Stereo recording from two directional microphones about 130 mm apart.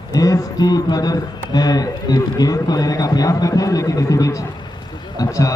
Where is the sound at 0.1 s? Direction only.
25° left (ahead or behind).